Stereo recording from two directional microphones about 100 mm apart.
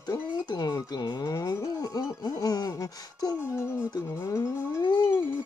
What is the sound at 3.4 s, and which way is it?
Speech, 25° left (ahead or behind).